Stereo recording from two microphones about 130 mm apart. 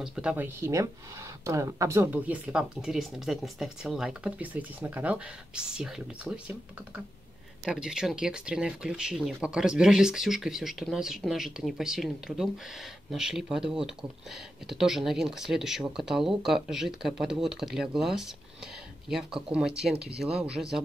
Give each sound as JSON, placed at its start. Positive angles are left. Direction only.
{"t": 0.0, "sound": "speech", "side_deg": -5}
{"t": 0.6, "sound": "speech", "side_deg": -25}
{"t": 7.6, "sound": "speech", "side_deg": -5}